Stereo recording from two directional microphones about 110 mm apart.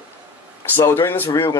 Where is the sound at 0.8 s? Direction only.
20° left (ahead or behind).